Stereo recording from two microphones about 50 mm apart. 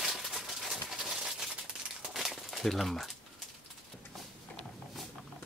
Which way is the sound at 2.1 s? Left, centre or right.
Centre.